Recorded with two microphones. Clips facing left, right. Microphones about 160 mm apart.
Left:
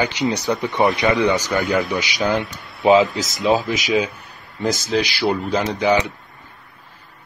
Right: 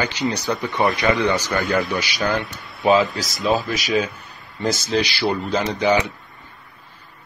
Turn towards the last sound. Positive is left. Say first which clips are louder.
# left 1 dB
turn(degrees=5)  # may be behind; listen again after turning